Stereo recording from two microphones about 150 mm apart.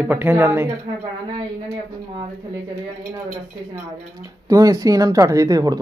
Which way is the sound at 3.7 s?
25° right (ahead or behind).